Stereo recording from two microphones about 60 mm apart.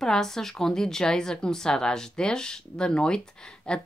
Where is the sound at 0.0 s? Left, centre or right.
Centre.